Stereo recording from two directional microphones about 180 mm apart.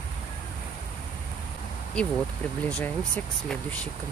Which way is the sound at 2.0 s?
5° left (ahead or behind).